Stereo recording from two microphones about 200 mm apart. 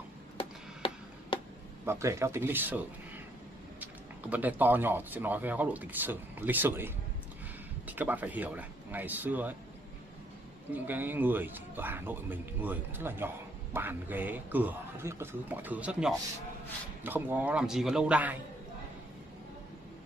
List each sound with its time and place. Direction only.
0.4 s tick-tock: 25° left (ahead or behind)
1.9 s speech: 15° right (ahead or behind)
3.8 s speech: 10° right (ahead or behind)
10.7 s speech: 10° right (ahead or behind)